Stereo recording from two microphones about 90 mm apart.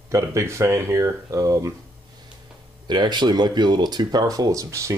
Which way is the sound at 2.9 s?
55° right (ahead or behind).